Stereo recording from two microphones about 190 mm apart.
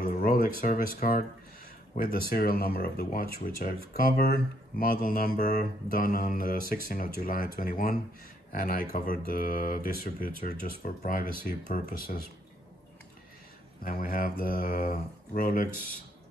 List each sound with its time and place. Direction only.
0.0 s speech: 45° left (ahead or behind)
13.8 s speech: 50° left (ahead or behind)